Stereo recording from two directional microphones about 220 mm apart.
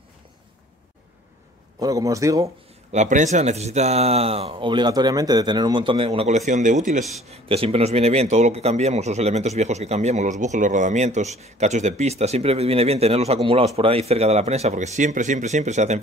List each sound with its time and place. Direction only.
1.8 s a man's voice: 15° right (ahead or behind)
2.9 s a man's voice: 35° right (ahead or behind)